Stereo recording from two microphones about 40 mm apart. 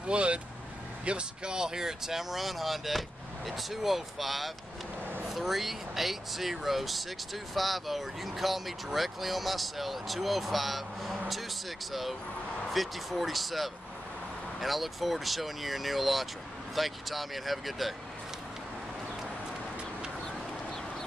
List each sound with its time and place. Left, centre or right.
0.0 s speech: right; by 17.9 s centre